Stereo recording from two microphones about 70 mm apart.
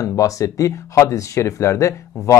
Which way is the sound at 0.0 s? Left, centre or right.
Left.